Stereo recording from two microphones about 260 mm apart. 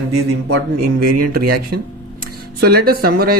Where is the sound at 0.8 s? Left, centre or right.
Right.